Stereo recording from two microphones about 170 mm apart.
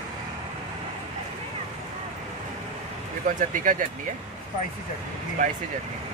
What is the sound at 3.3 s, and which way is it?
Speech, 50° right (ahead or behind).